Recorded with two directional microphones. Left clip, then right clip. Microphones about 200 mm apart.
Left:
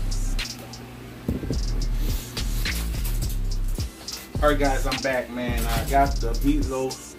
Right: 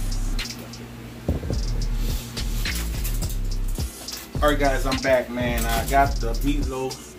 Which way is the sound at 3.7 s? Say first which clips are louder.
Right 1 dB; centre (ahead or behind).